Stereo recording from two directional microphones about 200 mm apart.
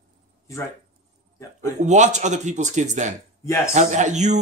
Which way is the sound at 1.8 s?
35° right (ahead or behind).